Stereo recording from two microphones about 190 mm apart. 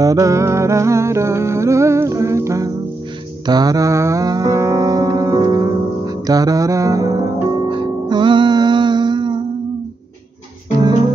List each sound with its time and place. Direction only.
0.0 s music: 15° right (ahead or behind)